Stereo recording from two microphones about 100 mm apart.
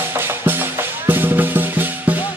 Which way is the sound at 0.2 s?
20° right (ahead or behind).